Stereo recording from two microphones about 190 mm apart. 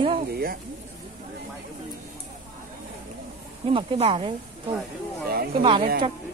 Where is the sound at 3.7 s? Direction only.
30° right (ahead or behind).